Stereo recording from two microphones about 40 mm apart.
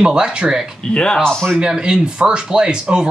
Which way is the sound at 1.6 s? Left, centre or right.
Centre.